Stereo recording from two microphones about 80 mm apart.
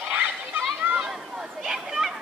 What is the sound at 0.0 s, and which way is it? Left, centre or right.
Children playing, centre.